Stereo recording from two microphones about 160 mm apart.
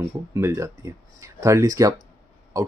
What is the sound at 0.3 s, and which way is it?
Speech, 20° right (ahead or behind).